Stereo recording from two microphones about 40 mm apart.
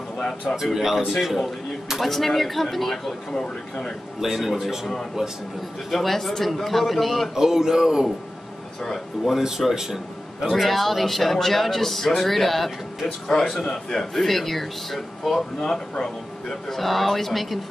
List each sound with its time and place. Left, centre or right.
0.2 s speech: centre
0.7 s a man's voice: centre
3.4 s speech: left
4.2 s a man's voice: centre
5.9 s a man's voice: centre
7.3 s speech: centre
8.8 s speech: centre
9.3 s a man's voice: centre
14.1 s a man's voice: centre